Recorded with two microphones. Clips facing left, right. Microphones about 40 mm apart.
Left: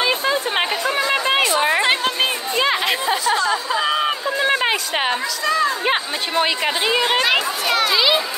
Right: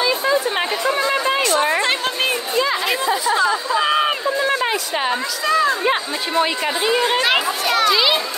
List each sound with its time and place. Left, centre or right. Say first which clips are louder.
0.0 s chatter: right 1 dB; left
2.6 s chatter: left 2 dB; left
3.3 s chatter: right 2 dB; centre
4.4 s a sound: left 4 dB; left
5.5 s chatter: right 2 dB; centre
5.9 s speech: right 1 dB; left
7.2 s a sound: right 1 dB; centre
7.7 s children playing: right 1 dB; centre